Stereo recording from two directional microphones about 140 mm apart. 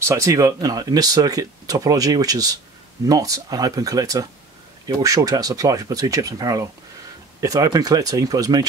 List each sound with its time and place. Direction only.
0.0 s speech: 20° right (ahead or behind)